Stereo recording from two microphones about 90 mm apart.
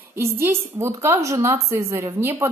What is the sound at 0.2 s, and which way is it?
A woman's voice, 25° right (ahead or behind).